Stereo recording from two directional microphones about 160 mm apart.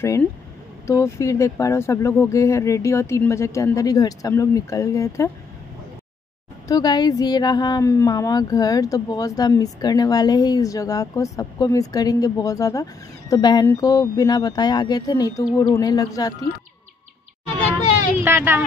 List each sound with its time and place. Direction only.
0.8 s speech: 20° left (ahead or behind)
6.7 s speech: 25° left (ahead or behind)
18.2 s speech: 15° right (ahead or behind)